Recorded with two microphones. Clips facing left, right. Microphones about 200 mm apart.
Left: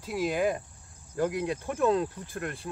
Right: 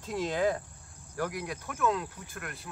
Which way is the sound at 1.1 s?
20° left (ahead or behind).